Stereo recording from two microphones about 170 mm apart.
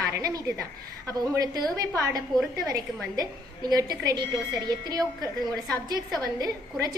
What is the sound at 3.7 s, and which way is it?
A woman's voice, 20° right (ahead or behind).